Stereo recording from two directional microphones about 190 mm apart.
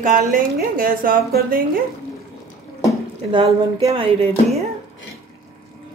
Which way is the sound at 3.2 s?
25° right (ahead or behind).